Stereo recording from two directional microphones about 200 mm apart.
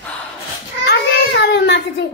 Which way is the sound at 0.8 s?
55° left (ahead or behind).